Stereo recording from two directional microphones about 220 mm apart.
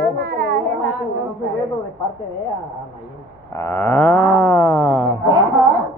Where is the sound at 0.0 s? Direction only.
45° right (ahead or behind).